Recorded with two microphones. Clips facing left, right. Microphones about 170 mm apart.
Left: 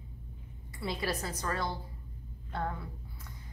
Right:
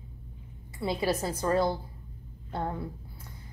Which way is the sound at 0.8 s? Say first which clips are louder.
Right 6 dB; 25° right (ahead or behind).